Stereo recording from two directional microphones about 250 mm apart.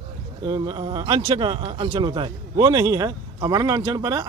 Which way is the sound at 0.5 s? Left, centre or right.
Centre.